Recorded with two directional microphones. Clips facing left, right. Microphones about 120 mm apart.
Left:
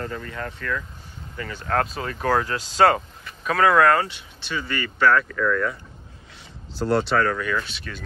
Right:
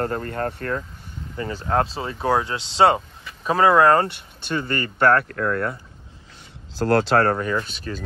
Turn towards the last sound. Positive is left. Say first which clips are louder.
# right 2 dB
turn(degrees=-40)  # may be behind; listen again after turning